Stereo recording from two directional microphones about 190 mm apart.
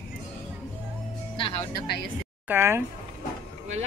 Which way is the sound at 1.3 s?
25° left (ahead or behind).